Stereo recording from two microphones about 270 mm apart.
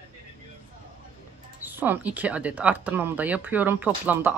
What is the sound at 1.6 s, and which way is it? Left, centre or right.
Speech, centre.